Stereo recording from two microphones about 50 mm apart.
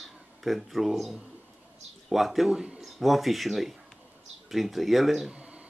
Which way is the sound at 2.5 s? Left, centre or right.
Right.